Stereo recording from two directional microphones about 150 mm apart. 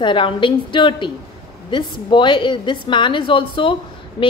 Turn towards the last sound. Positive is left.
turn(degrees=35)  # may be behind; listen again after turning